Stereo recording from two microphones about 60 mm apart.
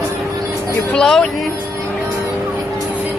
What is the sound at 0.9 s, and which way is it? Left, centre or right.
Speech, centre.